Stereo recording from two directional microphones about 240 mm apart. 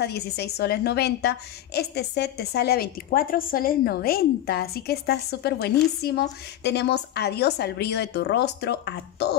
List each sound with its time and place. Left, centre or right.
0.0 s a woman's voice: left